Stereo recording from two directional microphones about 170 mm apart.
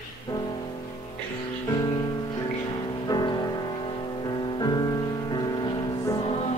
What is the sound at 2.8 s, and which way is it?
Music, 25° left (ahead or behind).